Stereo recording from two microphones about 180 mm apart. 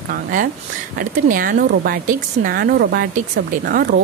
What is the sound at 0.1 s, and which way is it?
Speech, 50° right (ahead or behind).